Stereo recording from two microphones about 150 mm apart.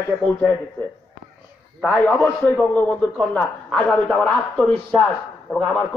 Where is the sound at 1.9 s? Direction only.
10° left (ahead or behind).